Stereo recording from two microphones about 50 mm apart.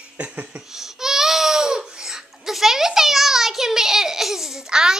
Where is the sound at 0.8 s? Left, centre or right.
Centre.